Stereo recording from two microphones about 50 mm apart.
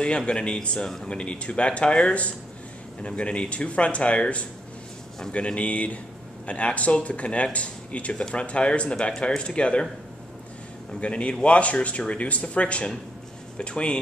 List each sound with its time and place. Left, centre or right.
0.3 s speech: centre
11.0 s speech: left